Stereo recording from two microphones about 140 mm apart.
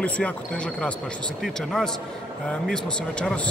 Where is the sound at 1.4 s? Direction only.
Centre (ahead or behind).